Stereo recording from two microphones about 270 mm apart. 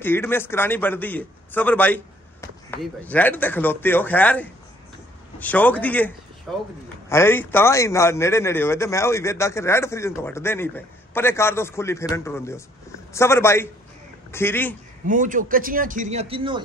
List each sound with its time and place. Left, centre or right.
0.0 s a man's voice: centre
15.0 s a man's voice: right